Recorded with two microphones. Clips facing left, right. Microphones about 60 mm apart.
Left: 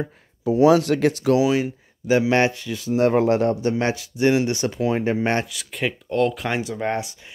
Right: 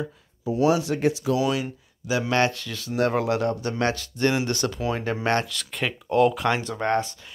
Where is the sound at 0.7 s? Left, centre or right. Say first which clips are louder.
Left 5 dB; left.